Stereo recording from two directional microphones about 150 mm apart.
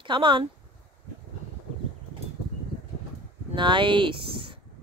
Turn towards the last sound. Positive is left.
turn(degrees=-35)  # may be behind; listen again after turning